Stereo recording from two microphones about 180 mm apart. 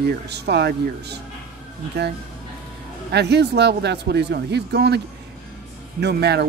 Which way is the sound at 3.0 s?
70° right (ahead or behind).